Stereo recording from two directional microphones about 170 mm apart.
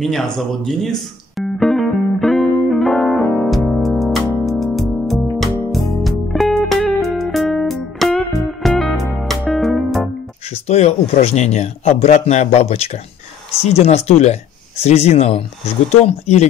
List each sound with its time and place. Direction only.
0.0 s speech: centre (ahead or behind)
0.4 s music: centre (ahead or behind)
10.5 s speech: 40° left (ahead or behind)